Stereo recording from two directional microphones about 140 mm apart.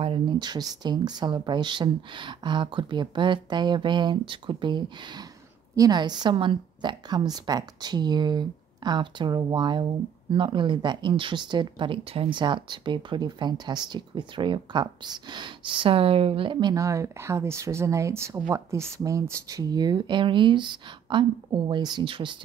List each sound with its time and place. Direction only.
0.0 s speech: 35° right (ahead or behind)
16.7 s speech: 20° right (ahead or behind); by 22.4 s 35° right (ahead or behind)